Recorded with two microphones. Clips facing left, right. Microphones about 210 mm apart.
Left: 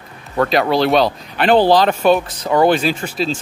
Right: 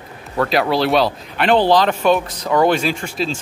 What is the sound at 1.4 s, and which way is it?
Speech, 40° left (ahead or behind).